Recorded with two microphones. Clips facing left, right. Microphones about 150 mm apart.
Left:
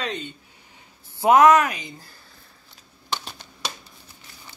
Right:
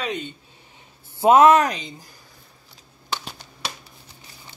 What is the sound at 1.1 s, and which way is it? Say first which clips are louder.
Speech: right 1 dB; 25° right (ahead or behind).